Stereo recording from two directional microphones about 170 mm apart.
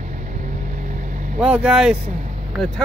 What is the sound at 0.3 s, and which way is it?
Vehicle, 50° right (ahead or behind).